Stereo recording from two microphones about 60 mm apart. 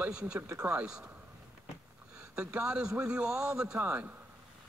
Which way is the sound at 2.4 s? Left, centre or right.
Centre.